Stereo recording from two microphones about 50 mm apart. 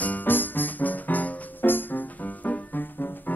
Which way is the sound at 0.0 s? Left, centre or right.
Left.